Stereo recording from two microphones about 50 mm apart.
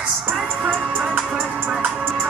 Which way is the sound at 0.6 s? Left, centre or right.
Right.